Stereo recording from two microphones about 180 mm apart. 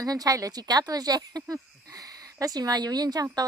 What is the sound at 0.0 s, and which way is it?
Speech, 20° right (ahead or behind).